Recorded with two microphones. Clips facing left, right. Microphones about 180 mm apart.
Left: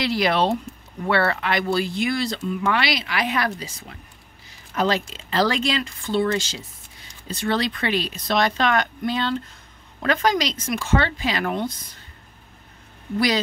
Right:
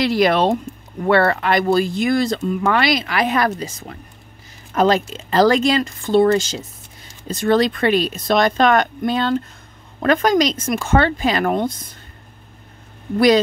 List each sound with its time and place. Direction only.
0.0 s speech: 50° right (ahead or behind)